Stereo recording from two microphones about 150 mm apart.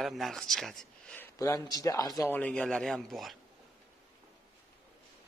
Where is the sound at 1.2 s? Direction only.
20° left (ahead or behind).